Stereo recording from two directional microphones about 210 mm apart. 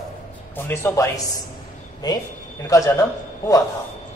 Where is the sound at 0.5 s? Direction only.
10° left (ahead or behind).